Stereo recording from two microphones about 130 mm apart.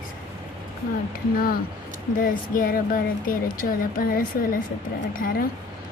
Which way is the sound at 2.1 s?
90° left.